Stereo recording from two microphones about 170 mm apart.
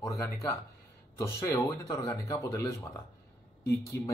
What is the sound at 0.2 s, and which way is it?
Speech, 15° left (ahead or behind).